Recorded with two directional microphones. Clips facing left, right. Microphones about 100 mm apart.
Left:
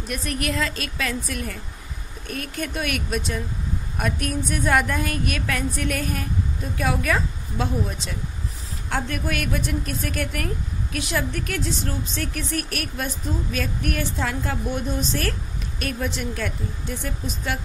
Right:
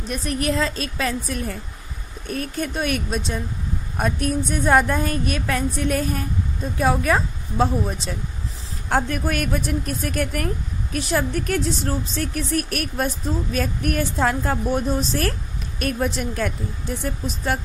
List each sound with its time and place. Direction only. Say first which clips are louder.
0.1 s a woman's voice: right 4 dB; 30° right (ahead or behind)